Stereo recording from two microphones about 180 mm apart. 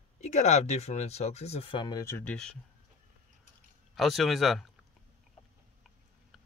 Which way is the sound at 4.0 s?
Centre (ahead or behind).